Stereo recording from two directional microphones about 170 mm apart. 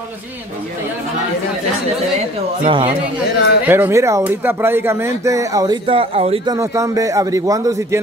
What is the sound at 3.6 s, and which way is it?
Speech, 10° right (ahead or behind).